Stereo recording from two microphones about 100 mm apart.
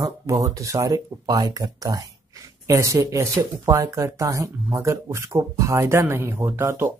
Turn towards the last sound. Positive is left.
turn(degrees=-25)  # may be behind; listen again after turning